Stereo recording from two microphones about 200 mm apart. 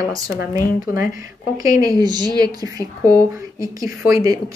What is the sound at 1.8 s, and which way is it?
A woman's voice, 20° right (ahead or behind).